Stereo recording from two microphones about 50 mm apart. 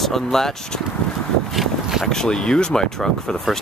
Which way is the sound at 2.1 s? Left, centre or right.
Centre.